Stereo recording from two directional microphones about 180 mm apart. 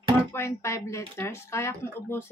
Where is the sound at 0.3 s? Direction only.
15° left (ahead or behind).